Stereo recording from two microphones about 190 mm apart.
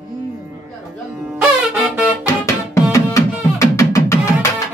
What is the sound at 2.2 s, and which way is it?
Music, 15° left (ahead or behind).